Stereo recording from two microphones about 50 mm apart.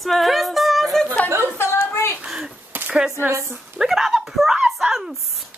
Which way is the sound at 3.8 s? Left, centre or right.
Centre.